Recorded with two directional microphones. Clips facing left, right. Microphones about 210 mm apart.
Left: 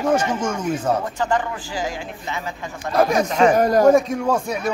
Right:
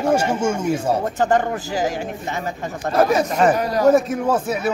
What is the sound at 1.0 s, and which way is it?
Speech, 45° right (ahead or behind).